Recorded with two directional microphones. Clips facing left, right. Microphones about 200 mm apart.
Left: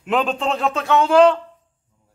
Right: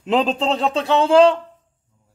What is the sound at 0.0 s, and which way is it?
A man's voice, 30° right (ahead or behind).